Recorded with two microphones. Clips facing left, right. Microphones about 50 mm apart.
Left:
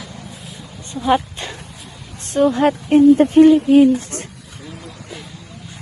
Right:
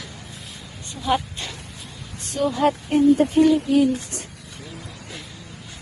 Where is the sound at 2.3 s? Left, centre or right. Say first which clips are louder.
Left 6 dB; left.